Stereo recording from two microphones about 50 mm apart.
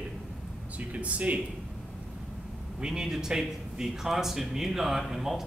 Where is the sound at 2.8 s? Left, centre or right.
Centre.